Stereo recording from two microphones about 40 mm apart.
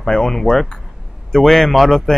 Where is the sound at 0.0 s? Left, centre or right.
Centre.